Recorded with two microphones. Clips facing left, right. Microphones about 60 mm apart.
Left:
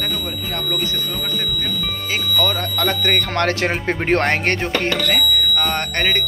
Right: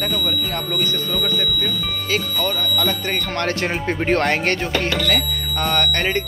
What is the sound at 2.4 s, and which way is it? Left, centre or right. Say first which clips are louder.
Speech: left 1 dB; left.